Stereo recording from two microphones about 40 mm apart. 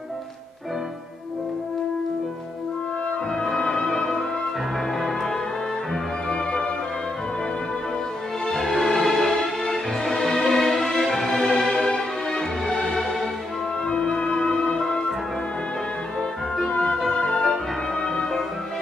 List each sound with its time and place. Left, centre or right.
3.5 s music: centre
8.5 s music: centre
13.8 s music: left
16.8 s music: centre